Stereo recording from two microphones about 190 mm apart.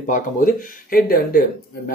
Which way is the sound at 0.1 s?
45° left (ahead or behind).